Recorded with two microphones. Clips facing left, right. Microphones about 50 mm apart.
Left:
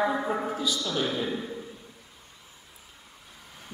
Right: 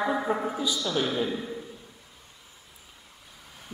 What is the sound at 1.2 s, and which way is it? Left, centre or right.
Speech, centre.